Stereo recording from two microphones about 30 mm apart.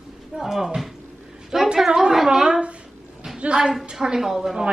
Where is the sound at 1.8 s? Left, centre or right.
Right.